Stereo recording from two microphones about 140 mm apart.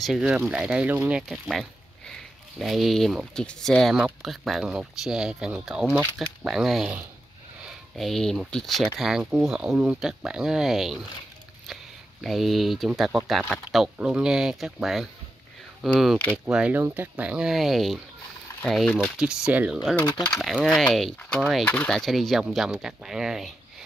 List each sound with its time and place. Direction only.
0.0 s speech: 5° right (ahead or behind)
1.3 s speech: centre (ahead or behind)
20.0 s speech: 30° left (ahead or behind)
20.3 s speech: centre (ahead or behind)